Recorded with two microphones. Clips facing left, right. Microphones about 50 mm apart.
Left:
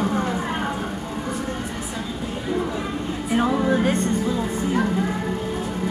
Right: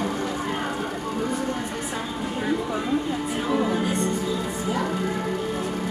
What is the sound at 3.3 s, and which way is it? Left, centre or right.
Music, left.